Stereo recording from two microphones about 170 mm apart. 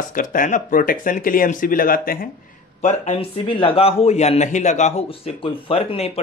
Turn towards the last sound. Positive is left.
turn(degrees=35)  # may be behind; listen again after turning